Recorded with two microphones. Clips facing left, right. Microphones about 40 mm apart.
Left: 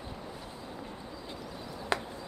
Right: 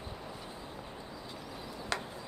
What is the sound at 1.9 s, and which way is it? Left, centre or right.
Chop, centre.